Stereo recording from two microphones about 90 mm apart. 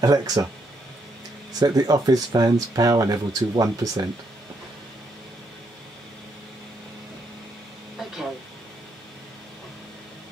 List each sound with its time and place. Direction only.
0.0 s speech: 45° right (ahead or behind)
1.6 s speech: 45° right (ahead or behind)